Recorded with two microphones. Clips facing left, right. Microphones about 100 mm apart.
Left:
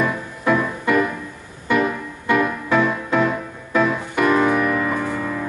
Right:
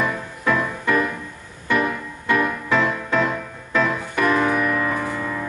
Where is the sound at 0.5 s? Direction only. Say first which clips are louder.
Left 2 dB; 15° left (ahead or behind).